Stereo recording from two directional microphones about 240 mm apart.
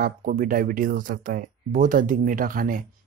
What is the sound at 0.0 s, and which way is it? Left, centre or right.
Speech, right.